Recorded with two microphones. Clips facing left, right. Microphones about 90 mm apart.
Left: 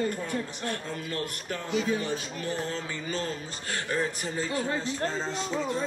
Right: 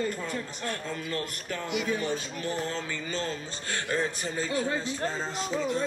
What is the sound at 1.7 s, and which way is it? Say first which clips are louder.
Speech: left 2 dB; 35° left (ahead or behind).